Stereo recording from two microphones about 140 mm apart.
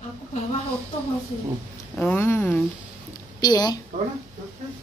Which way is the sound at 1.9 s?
10° left (ahead or behind).